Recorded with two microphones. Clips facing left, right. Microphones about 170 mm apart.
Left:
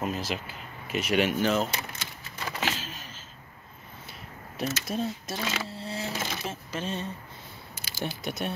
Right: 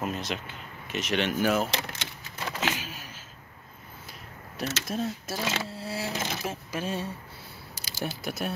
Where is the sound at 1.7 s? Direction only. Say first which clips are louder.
Right 2 dB; 75° right (ahead or behind).